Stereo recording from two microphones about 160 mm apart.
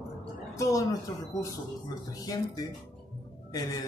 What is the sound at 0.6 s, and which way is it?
Speech, 20° left (ahead or behind).